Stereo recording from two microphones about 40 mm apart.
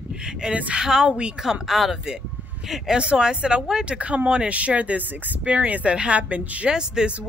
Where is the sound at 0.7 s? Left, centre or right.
Centre.